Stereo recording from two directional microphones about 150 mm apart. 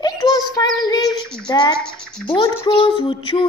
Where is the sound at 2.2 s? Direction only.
35° left (ahead or behind).